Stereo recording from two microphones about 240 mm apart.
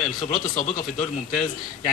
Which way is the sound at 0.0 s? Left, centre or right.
Centre.